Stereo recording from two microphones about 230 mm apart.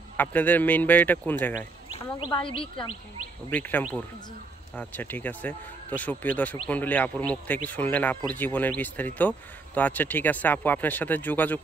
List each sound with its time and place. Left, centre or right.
0.2 s speech: centre
1.9 s speech: left
3.5 s speech: centre